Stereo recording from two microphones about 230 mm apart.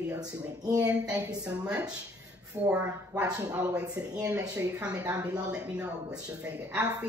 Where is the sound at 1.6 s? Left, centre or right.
Centre.